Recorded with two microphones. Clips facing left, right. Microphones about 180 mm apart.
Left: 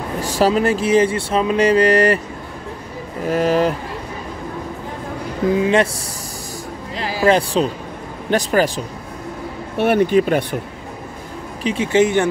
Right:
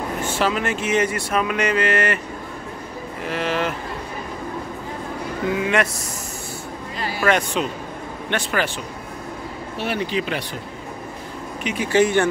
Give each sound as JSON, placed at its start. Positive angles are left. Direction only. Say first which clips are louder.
{"t": 0.2, "sound": "speech", "louder": "left 7 dB", "side_deg": 35}
{"t": 3.3, "sound": "speech", "louder": "left 7 dB", "side_deg": 40}
{"t": 5.6, "sound": "speech", "louder": "left 5 dB", "side_deg": 30}
{"t": 7.2, "sound": "speech", "louder": "left 5 dB", "side_deg": 30}
{"t": 9.8, "sound": "speech", "louder": "left 10 dB", "side_deg": 55}
{"t": 11.6, "sound": "speech", "louder": "left 3 dB", "side_deg": 25}